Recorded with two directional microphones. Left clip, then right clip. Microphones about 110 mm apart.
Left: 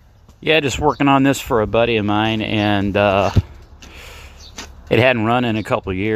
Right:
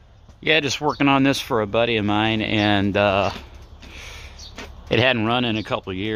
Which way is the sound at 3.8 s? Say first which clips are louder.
Left 1 dB; 20° left (ahead or behind).